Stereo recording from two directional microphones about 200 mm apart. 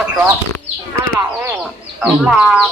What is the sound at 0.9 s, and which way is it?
Speech, 10° right (ahead or behind).